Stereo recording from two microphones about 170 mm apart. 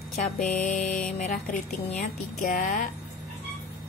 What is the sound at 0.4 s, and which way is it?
A woman's voice, 50° left (ahead or behind).